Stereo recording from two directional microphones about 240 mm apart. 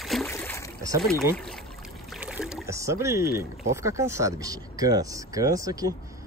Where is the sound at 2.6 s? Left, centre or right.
Centre.